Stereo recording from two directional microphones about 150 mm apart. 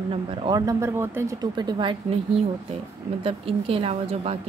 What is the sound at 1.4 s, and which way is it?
A woman's voice, 30° right (ahead or behind).